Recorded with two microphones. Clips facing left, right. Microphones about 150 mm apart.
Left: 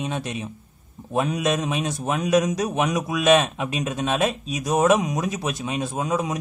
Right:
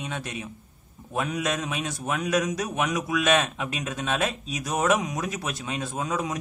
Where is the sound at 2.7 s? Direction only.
20° left (ahead or behind).